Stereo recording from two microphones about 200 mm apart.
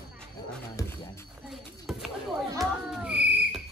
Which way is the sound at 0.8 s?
15° left (ahead or behind).